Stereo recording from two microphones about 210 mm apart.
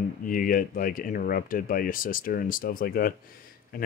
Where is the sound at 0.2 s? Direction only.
40° left (ahead or behind).